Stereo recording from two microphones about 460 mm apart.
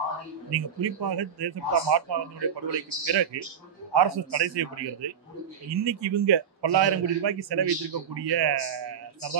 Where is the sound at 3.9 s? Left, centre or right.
Right.